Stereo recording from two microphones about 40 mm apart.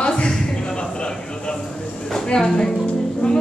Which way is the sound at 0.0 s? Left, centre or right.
Left.